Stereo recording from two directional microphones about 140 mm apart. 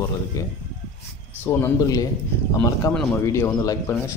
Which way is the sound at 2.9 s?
10° left (ahead or behind).